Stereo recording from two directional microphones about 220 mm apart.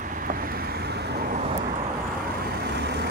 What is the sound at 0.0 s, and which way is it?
Vehicle, 40° right (ahead or behind).